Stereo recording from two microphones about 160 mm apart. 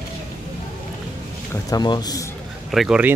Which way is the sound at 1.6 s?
25° left (ahead or behind).